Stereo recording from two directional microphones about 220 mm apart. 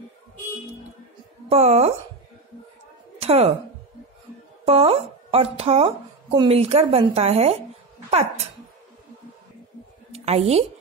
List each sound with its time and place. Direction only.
1.5 s a woman's voice: 30° right (ahead or behind)
3.2 s speech: 30° right (ahead or behind)
4.6 s a woman's voice: 30° right (ahead or behind)
10.1 s a woman's voice: 30° right (ahead or behind)